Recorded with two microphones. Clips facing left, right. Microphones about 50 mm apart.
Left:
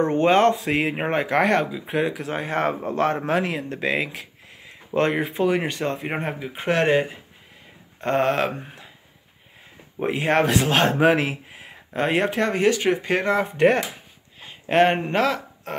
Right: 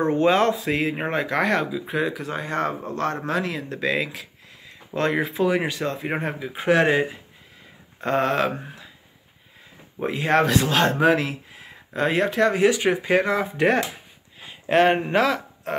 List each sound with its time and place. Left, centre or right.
0.0 s speech: centre
2.9 s a man's voice: left
5.2 s speech: centre
10.0 s speech: centre
12.6 s speech: centre
13.0 s speech: centre
14.4 s a sound: centre